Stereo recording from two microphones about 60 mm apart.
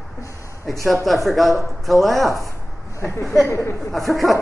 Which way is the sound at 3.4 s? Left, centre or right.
Left.